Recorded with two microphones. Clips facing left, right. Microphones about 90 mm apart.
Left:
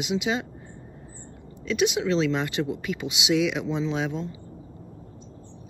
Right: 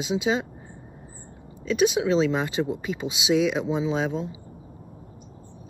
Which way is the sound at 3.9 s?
30° right (ahead or behind).